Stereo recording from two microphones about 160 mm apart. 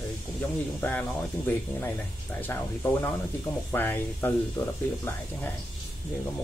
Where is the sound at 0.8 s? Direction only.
10° left (ahead or behind).